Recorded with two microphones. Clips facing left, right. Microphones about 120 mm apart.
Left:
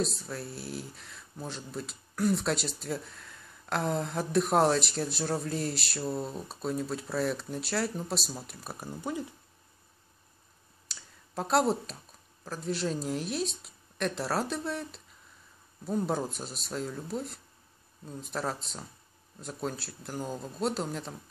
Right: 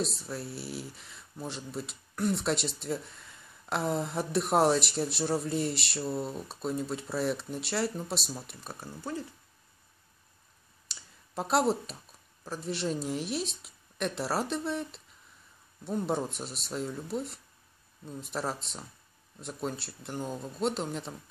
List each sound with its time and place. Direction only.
0.0 s speech: centre (ahead or behind)
8.7 s speech: 15° left (ahead or behind)
10.9 s clicking: centre (ahead or behind)
12.4 s speech: centre (ahead or behind)